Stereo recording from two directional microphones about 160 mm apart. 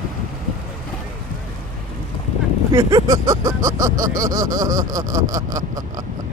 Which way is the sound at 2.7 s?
20° right (ahead or behind).